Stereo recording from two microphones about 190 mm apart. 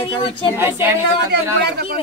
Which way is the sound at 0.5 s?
10° right (ahead or behind).